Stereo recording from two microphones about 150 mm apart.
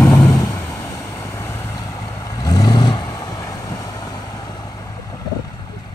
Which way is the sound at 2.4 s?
25° left (ahead or behind).